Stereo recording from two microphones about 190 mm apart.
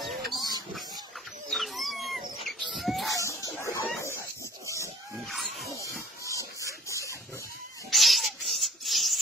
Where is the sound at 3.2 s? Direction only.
15° left (ahead or behind).